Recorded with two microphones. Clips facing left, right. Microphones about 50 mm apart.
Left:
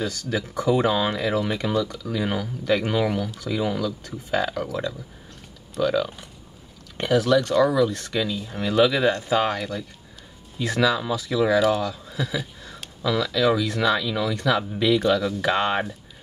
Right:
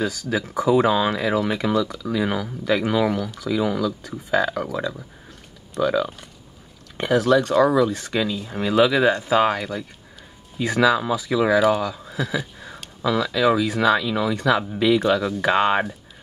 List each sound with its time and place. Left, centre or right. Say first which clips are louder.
0.0 s speech: right 3 dB; centre
5.8 s speech: right 1 dB; centre
12.5 s a sound: right 3 dB; centre
13.0 s speech: right 2 dB; centre